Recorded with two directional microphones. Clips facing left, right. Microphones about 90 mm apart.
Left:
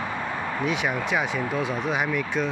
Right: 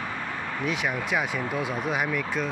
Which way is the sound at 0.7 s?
Centre (ahead or behind).